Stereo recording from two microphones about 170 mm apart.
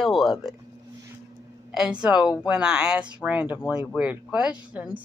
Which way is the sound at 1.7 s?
5° right (ahead or behind).